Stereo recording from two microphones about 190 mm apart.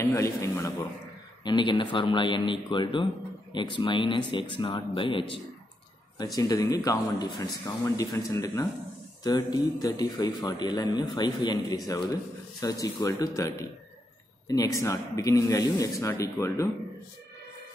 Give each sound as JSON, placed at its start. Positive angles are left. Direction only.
{"t": 0.0, "sound": "a man's voice", "side_deg": 15}